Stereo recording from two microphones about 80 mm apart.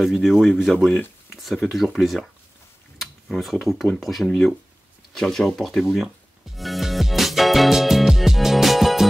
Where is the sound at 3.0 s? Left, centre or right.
Centre.